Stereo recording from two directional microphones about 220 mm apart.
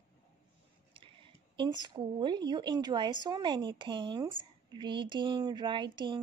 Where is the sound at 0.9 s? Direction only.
20° right (ahead or behind).